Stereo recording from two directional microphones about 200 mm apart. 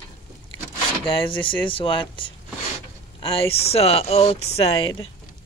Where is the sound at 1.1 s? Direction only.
25° left (ahead or behind).